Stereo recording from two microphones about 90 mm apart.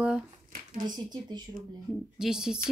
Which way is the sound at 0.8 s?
55° right (ahead or behind).